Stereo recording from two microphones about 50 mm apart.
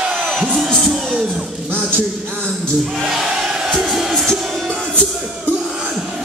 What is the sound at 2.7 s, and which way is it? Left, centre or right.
Crowd, centre.